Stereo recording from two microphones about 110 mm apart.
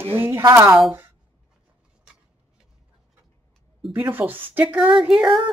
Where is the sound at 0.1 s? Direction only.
20° right (ahead or behind).